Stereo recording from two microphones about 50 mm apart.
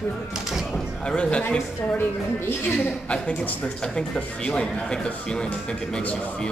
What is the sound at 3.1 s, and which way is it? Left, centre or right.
Speech, left.